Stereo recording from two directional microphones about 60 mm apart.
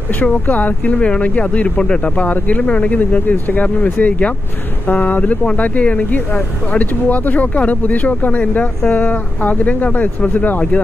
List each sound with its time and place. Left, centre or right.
0.1 s speech: left
0.9 s speech: centre